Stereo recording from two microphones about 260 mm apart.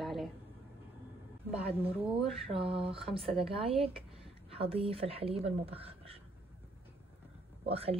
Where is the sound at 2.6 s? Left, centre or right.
Right.